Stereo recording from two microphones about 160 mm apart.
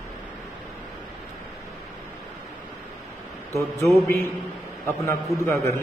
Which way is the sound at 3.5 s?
15° left (ahead or behind).